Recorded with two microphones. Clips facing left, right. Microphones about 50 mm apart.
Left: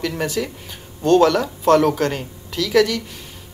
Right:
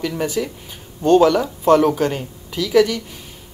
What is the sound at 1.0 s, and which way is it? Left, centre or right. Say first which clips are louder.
Speech: right 1 dB; centre.